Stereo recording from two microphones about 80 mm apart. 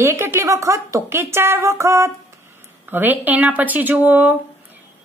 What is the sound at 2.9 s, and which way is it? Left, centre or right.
A woman's voice, right.